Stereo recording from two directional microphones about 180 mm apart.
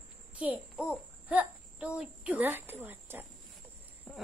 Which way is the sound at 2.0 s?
5° right (ahead or behind).